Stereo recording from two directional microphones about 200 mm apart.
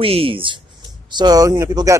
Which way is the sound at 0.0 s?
30° right (ahead or behind).